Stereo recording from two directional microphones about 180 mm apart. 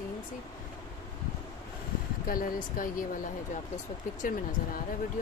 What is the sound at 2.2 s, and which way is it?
Speech, 50° left (ahead or behind).